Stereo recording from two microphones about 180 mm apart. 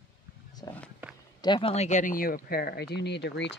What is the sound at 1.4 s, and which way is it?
Speech, 30° left (ahead or behind).